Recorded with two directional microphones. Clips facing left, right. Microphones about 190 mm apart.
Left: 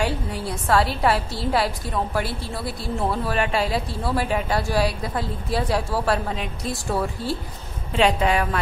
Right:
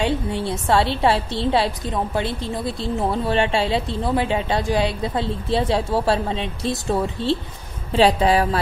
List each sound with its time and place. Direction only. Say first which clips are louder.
0.0 s a woman's voice: right 3 dB; 25° right (ahead or behind)
7.9 s a woman's voice: right 4 dB; 35° right (ahead or behind)